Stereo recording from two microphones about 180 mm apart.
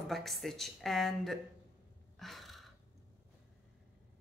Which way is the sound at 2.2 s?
Centre (ahead or behind).